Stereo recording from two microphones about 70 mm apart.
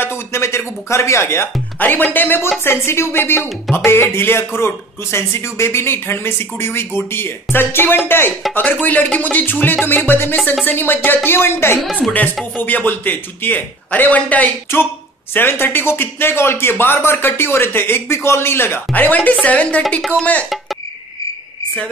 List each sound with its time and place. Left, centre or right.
0.0 s music: left
1.8 s a man's voice: left
8.8 s a man's voice: left
12.0 s speech: centre
12.5 s a man's voice: left
14.7 s speech: left
18.9 s a man's voice: left